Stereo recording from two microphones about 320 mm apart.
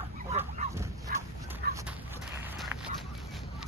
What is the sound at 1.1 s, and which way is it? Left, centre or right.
Dog, right.